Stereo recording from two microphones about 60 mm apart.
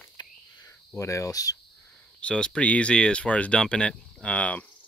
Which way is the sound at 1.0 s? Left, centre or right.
Left.